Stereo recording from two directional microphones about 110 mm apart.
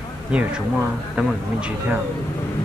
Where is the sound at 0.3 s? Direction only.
10° right (ahead or behind).